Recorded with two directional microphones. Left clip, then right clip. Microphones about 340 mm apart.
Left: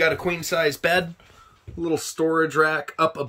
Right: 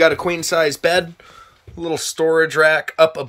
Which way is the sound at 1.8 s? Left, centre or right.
Right.